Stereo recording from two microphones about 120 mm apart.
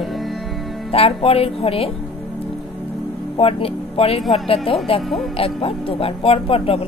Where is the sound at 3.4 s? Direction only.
55° left (ahead or behind).